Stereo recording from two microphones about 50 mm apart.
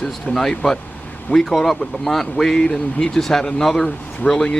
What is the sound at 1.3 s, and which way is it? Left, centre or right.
Speech, centre.